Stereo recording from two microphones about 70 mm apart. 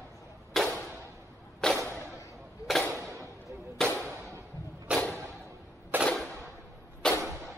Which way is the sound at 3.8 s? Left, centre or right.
Centre.